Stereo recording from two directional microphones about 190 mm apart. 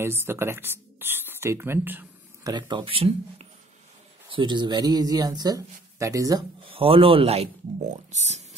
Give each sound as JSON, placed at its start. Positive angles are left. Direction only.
{"t": 0.0, "sound": "speech", "side_deg": -10}
{"t": 2.5, "sound": "speech", "side_deg": -25}